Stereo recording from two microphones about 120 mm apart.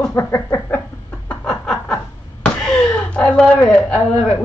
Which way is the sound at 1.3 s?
5° left (ahead or behind).